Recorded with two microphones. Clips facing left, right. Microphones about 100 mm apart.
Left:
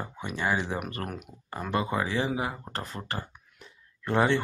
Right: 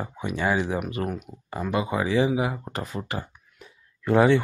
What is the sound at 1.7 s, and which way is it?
Speech, 10° right (ahead or behind).